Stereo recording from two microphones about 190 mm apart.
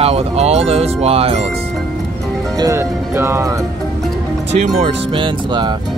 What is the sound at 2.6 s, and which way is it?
Speech, 15° right (ahead or behind).